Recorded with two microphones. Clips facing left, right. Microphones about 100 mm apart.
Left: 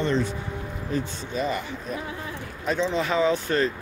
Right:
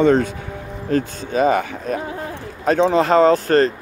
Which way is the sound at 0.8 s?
70° right (ahead or behind).